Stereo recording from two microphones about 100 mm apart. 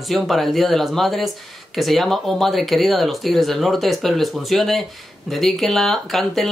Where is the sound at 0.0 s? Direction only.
Centre (ahead or behind).